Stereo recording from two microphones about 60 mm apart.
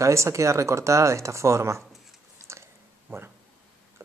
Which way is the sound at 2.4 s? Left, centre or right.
Right.